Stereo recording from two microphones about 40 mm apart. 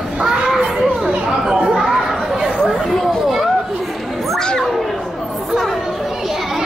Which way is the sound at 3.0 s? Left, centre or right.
Centre.